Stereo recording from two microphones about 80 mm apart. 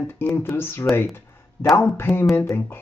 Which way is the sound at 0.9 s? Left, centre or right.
Left.